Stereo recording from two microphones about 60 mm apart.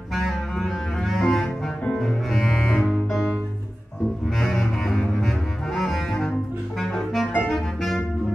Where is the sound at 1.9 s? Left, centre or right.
Centre.